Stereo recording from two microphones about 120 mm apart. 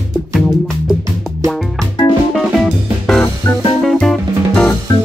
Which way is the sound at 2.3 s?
Centre (ahead or behind).